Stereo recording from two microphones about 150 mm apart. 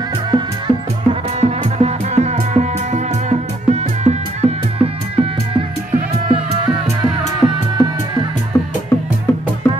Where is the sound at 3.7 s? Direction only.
45° right (ahead or behind).